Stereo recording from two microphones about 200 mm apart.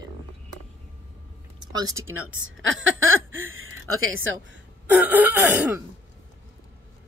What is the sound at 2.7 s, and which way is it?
A woman's voice, 75° right (ahead or behind).